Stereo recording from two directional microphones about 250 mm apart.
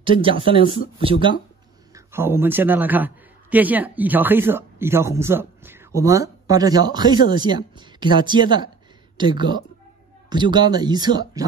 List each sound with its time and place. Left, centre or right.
0.0 s a man's voice: right